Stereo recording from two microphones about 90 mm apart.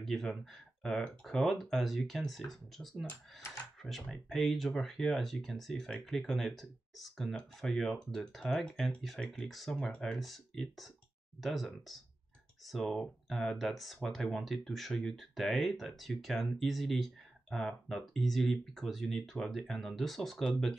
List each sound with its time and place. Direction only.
0.0 s speech: centre (ahead or behind)